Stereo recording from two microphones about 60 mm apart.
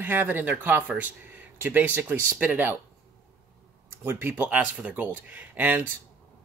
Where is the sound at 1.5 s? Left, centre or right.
Right.